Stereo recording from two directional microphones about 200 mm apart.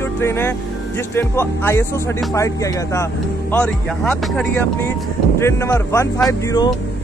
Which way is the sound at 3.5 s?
5° left (ahead or behind).